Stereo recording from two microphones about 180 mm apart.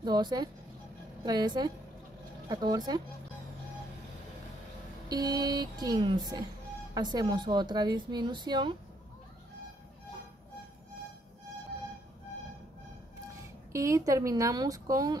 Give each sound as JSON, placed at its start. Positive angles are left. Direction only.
{"t": 0.0, "sound": "speech", "side_deg": -25}
{"t": 5.0, "sound": "speech", "side_deg": -20}
{"t": 13.4, "sound": "speech", "side_deg": -15}